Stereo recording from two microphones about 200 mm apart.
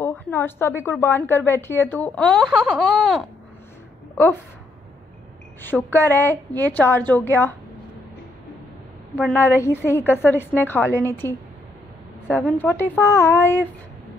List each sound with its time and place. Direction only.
0.0 s a woman's voice: 10° left (ahead or behind)
5.6 s a woman's voice: 10° left (ahead or behind)
9.1 s a woman's voice: 10° left (ahead or behind)
12.4 s a woman's voice: 10° left (ahead or behind)